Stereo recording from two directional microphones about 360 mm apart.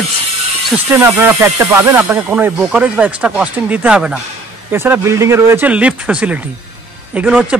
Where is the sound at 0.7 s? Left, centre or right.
Centre.